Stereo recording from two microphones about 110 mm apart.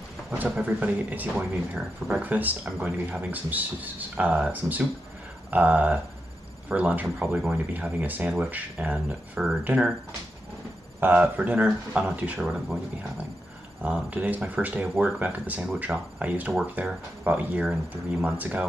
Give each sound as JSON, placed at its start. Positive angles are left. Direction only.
{"t": 0.3, "sound": "speech", "side_deg": -10}
{"t": 11.0, "sound": "speech", "side_deg": -15}
{"t": 13.8, "sound": "speech", "side_deg": -10}